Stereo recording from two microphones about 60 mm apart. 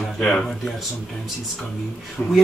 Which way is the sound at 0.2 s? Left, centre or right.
Centre.